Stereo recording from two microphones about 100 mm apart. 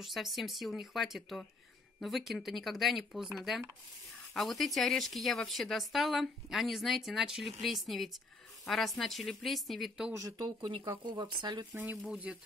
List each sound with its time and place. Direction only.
0.0 s speech: centre (ahead or behind)
10.3 s speech: 50° right (ahead or behind)
11.7 s speech: 15° right (ahead or behind)